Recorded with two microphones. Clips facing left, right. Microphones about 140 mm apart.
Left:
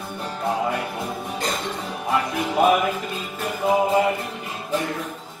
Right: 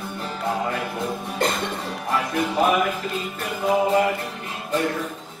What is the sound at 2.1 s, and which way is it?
Music, centre (ahead or behind).